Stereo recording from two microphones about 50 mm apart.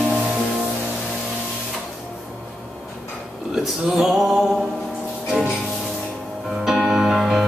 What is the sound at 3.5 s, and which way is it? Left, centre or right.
Male singing, centre.